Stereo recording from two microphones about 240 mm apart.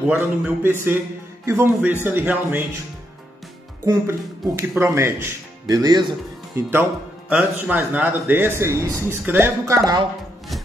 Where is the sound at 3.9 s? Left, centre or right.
Centre.